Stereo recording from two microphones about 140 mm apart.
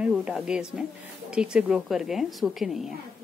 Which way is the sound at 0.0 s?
10° right (ahead or behind).